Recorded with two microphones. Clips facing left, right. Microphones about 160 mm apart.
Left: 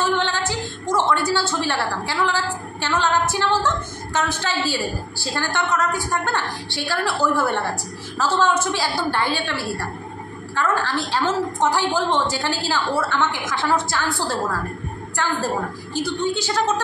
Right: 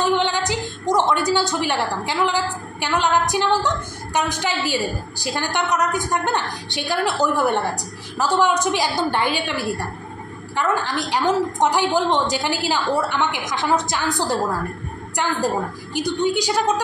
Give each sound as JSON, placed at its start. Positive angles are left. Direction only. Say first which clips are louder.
{"t": 0.0, "sound": "a woman's voice", "louder": "right 2 dB", "side_deg": -15}